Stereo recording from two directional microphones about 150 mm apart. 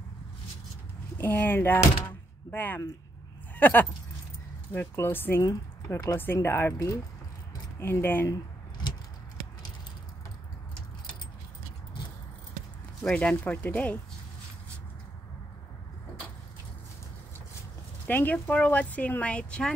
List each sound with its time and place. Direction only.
1.1 s speech: 15° left (ahead or behind)
5.4 s speech: 25° left (ahead or behind)
13.0 s speech: 10° left (ahead or behind)
18.0 s speech: 10° left (ahead or behind)